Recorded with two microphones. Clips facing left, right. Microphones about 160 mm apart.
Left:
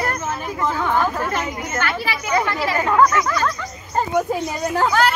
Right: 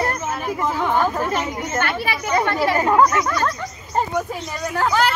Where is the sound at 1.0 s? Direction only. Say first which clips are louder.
Right 1 dB; 20° right (ahead or behind).